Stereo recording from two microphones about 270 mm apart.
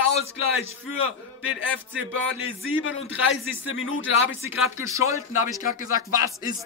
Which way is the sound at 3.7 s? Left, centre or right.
Left.